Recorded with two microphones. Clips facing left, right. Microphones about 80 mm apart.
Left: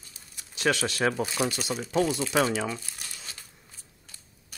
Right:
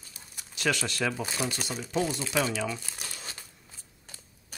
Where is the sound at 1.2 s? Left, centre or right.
Left.